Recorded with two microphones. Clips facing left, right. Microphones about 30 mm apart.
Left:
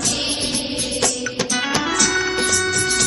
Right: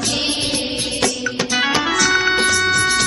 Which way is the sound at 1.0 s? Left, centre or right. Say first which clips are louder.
Right 2 dB; centre.